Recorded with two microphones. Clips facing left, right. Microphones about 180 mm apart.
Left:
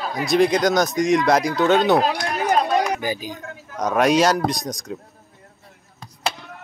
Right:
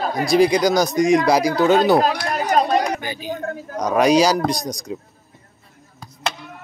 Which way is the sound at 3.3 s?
50° right (ahead or behind).